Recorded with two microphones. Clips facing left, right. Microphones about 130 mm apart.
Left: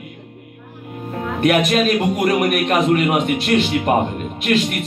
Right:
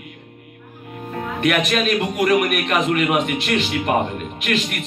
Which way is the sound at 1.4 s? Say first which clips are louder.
Left 4 dB; 30° left (ahead or behind).